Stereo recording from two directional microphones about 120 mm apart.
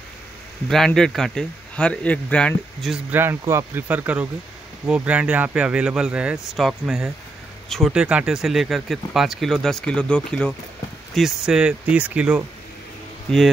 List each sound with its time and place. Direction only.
0.7 s speech: centre (ahead or behind)
3.1 s a man's voice: 20° right (ahead or behind); by 10.5 s 10° left (ahead or behind)
11.1 s a man's voice: 5° right (ahead or behind)